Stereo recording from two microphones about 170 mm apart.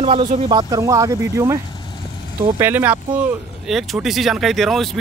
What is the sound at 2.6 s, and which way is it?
Speech, 10° right (ahead or behind).